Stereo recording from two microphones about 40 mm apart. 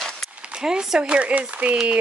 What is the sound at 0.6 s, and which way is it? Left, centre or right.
Speech, centre.